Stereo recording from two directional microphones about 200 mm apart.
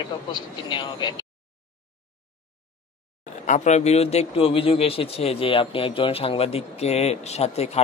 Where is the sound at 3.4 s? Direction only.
35° left (ahead or behind).